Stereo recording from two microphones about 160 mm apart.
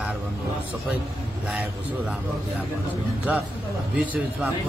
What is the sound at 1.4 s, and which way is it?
Speech, 5° right (ahead or behind).